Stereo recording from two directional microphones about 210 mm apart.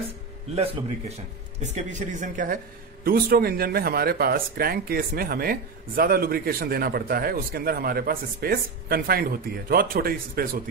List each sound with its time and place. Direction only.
0.6 s a man's voice: 30° right (ahead or behind); by 10.6 s 45° right (ahead or behind)